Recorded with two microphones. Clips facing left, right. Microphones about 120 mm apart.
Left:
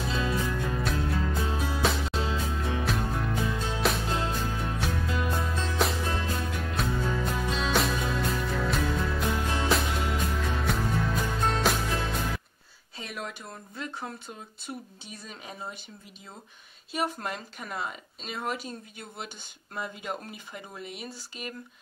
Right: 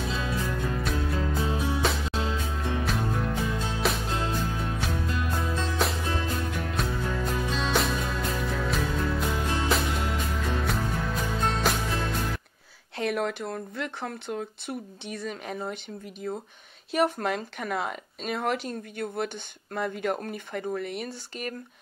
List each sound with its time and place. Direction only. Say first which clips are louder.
0.1 s music: left 1 dB; centre (ahead or behind)
12.9 s speech: right 10 dB; 60° right (ahead or behind)